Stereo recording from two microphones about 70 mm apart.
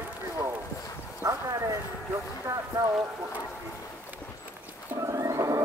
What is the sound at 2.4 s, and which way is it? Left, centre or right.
Boat, right.